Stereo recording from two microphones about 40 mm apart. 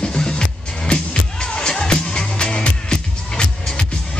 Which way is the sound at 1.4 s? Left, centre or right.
Left.